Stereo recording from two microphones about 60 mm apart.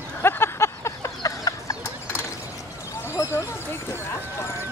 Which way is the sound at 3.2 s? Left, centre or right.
Left.